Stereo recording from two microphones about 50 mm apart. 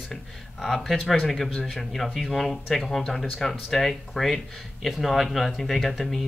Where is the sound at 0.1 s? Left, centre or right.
Centre.